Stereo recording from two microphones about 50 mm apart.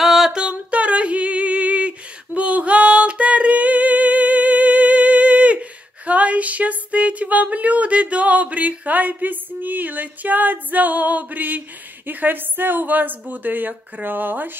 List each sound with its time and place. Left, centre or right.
0.0 s music: centre
0.4 s female singing: right
12.1 s a woman's voice: right